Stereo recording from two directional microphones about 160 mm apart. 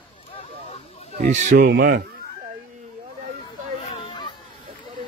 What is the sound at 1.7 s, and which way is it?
Speech, 70° right (ahead or behind).